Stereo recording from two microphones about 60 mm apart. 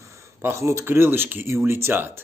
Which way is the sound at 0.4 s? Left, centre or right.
Right.